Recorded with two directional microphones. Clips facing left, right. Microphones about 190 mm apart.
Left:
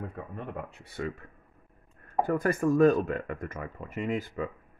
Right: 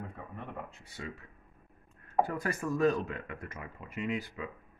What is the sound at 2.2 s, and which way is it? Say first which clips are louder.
Speech: left 8 dB; 50° left (ahead or behind).